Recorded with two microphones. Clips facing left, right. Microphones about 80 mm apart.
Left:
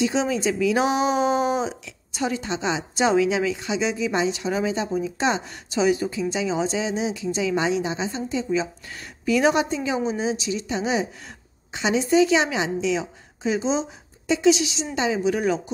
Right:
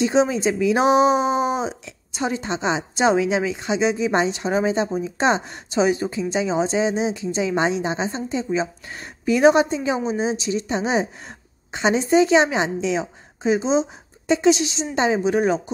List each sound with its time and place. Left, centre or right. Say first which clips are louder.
0.0 s a woman's voice: right 4 dB; right